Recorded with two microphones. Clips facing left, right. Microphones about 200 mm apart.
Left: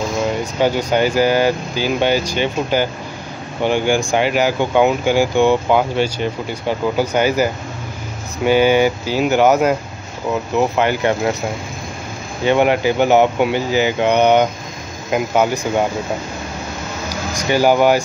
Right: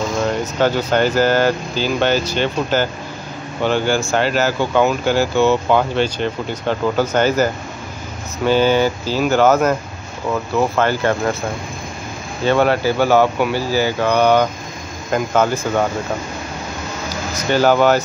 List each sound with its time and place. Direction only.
0.2 s speech: 10° left (ahead or behind)
12.4 s speech: 15° left (ahead or behind)
17.3 s speech: 10° left (ahead or behind)